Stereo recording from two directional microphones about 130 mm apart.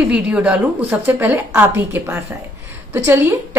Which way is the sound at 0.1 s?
10° right (ahead or behind).